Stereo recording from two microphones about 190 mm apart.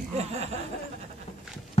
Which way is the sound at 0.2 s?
35° right (ahead or behind).